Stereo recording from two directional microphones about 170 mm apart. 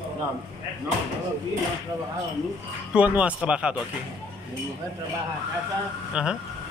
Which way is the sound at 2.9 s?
5° right (ahead or behind).